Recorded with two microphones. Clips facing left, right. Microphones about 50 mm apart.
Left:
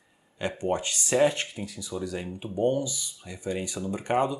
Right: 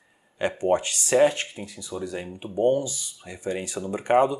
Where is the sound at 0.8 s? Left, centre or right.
Centre.